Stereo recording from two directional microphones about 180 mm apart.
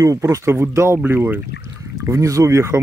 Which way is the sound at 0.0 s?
20° right (ahead or behind).